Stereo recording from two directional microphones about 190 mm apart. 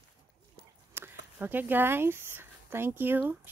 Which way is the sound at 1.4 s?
10° right (ahead or behind).